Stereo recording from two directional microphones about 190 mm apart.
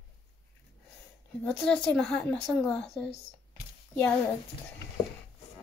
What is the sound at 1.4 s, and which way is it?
A woman's voice, 5° left (ahead or behind).